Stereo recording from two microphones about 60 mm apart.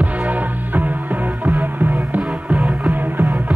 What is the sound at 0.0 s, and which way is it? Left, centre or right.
Music, right.